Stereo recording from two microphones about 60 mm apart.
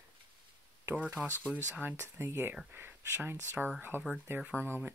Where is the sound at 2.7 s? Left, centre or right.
Right.